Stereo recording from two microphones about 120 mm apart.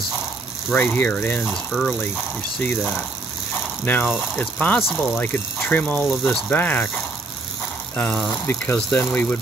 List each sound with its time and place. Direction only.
0.7 s speech: 15° left (ahead or behind)
1.5 s speech: 5° left (ahead or behind)
7.9 s speech: 15° left (ahead or behind)